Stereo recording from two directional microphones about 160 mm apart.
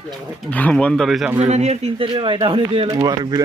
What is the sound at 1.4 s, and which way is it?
Speech, 45° right (ahead or behind).